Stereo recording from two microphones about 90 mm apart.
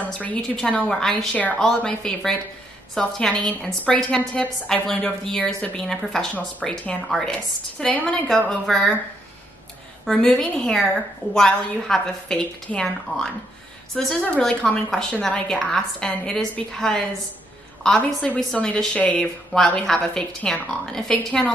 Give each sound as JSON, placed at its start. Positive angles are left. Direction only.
{"t": 0.0, "sound": "a woman's voice", "side_deg": 15}
{"t": 10.0, "sound": "a woman's voice", "side_deg": 10}
{"t": 19.5, "sound": "a woman's voice", "side_deg": 5}